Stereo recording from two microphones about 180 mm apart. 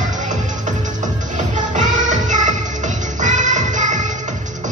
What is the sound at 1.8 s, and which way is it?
Music, 45° right (ahead or behind).